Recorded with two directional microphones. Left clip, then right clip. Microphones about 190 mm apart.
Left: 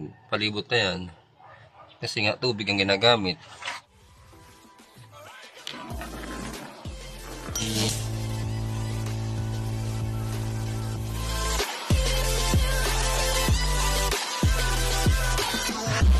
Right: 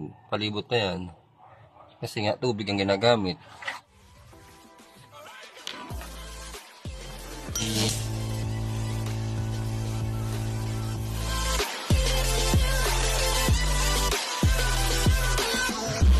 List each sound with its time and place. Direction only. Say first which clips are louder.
0.3 s speech: left 2 dB; 20° right (ahead or behind)
5.1 s music: even; centre (ahead or behind)